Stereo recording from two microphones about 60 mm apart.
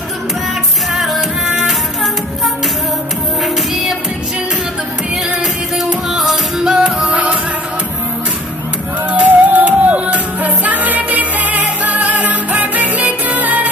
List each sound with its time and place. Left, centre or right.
0.9 s music: centre
5.9 s music: centre
9.1 s music: right